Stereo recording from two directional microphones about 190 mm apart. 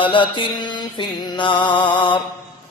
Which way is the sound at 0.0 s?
25° left (ahead or behind).